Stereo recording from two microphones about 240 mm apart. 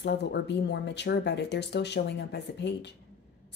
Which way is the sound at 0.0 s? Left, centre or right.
Left.